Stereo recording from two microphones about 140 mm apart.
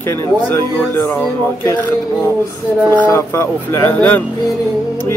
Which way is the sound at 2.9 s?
15° left (ahead or behind).